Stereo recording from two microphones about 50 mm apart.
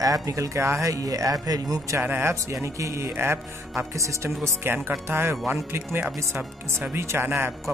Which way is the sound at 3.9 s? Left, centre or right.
Right.